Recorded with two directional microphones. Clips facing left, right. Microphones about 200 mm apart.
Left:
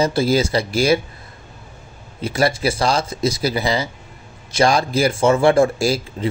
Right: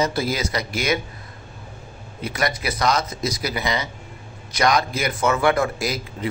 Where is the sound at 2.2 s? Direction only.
30° left (ahead or behind).